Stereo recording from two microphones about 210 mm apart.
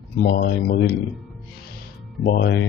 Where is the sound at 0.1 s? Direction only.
45° left (ahead or behind).